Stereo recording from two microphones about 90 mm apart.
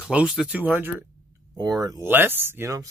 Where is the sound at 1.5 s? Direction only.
45° right (ahead or behind).